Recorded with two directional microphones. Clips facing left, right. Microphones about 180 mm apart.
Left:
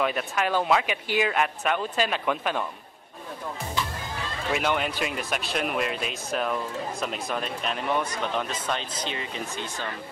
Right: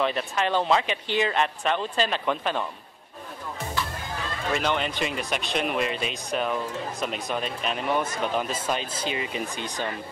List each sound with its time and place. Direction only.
0.0 s speech: 5° left (ahead or behind)
4.5 s speech: 5° left (ahead or behind); by 9.8 s 15° right (ahead or behind)